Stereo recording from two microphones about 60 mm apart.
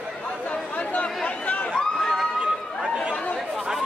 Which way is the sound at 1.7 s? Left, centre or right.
Centre.